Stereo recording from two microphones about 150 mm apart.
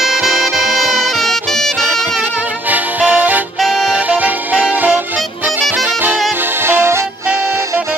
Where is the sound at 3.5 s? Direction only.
Centre (ahead or behind).